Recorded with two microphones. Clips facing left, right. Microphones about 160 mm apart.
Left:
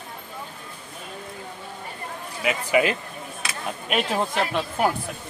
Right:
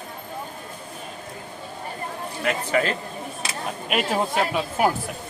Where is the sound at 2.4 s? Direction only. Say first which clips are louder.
Left 2 dB; 10° left (ahead or behind).